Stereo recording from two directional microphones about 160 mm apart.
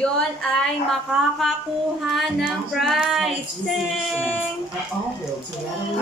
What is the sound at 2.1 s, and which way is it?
Speech, centre (ahead or behind).